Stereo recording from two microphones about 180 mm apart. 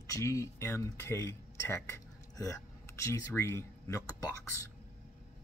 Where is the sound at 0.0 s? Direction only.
20° left (ahead or behind).